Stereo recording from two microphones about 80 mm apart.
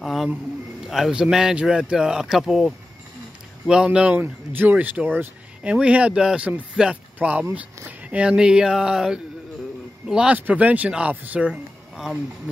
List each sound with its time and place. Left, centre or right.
0.0 s a man's voice: centre
4.2 s speech: right
5.6 s speech: centre